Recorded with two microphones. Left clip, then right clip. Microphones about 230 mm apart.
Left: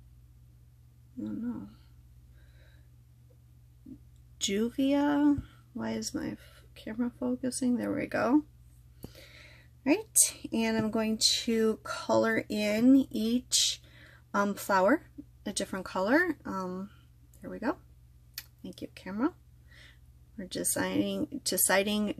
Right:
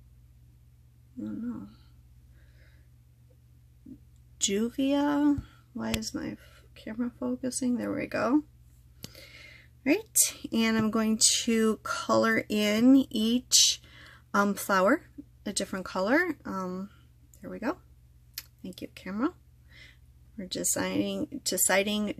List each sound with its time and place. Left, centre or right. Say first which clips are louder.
1.2 s a sound: even; centre
4.4 s a woman's voice: right 1 dB; centre
13.8 s a sound: right 4 dB; centre
15.4 s speech: right 2 dB; centre
18.4 s computer keyboard: right 2 dB; centre
18.8 s speech: right 1 dB; centre